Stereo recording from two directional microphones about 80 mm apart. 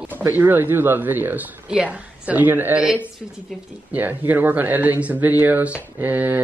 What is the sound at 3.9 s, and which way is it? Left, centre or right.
A man's voice, right.